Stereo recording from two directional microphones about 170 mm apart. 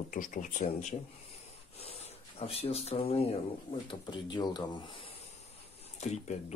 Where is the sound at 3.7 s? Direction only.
30° left (ahead or behind).